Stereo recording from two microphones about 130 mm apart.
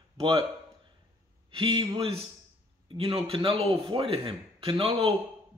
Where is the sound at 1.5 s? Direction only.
40° right (ahead or behind).